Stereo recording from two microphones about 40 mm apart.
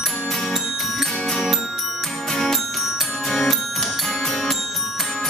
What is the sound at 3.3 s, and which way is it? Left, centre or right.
Music, centre.